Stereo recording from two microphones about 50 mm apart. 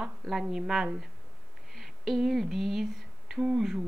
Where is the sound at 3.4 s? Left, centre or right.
Centre.